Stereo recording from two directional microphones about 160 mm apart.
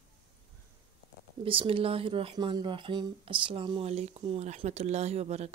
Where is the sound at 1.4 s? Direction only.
35° right (ahead or behind).